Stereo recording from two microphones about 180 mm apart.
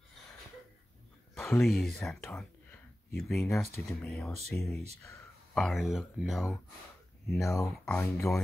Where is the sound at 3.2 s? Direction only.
Centre (ahead or behind).